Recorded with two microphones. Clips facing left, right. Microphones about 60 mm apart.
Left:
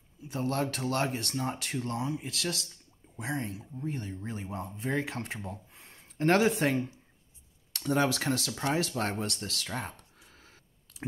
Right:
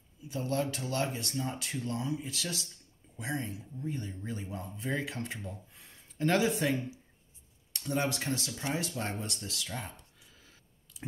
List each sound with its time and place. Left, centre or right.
0.2 s speech: left
3.2 s speech: left
3.8 s speech: left
4.4 s speech: left
5.7 s a sound: left
6.1 s speech: left
7.7 s speech: left